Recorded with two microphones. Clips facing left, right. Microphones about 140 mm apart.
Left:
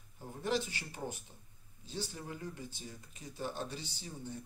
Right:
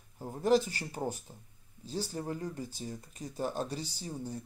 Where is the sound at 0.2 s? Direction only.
40° right (ahead or behind).